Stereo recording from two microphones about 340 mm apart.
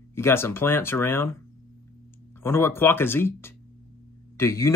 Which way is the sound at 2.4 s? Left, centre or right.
Centre.